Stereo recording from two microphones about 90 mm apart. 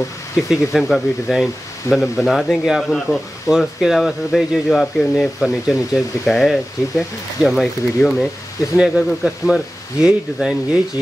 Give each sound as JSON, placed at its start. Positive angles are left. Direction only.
{"t": 0.5, "sound": "speech", "side_deg": 0}